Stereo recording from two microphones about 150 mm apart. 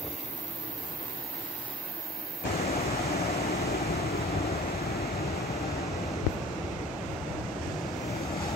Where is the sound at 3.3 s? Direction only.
90° left.